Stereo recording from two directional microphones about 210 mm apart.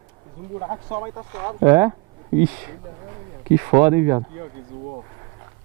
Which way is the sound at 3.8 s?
15° right (ahead or behind).